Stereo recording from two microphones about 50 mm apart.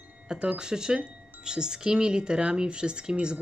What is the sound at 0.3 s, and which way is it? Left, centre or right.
Speech, centre.